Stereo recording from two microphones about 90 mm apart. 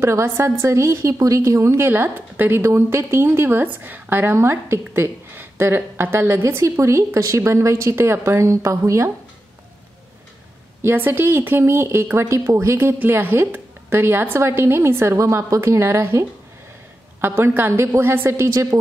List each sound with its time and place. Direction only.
0.0 s a woman's voice: 30° right (ahead or behind)
10.8 s a woman's voice: 25° right (ahead or behind)